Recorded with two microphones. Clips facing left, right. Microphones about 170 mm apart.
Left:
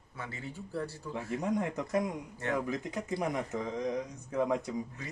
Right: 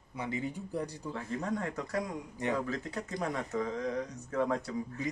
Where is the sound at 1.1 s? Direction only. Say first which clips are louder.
Left 4 dB; 15° left (ahead or behind).